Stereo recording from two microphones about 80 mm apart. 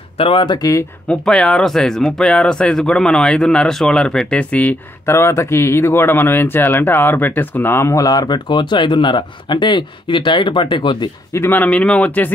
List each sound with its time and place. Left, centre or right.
0.3 s speech: left
1.0 s speech: centre
5.0 s speech: left
11.3 s a man's voice: left